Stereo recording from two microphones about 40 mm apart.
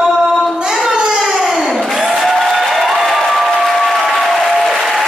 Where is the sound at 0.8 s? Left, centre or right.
Centre.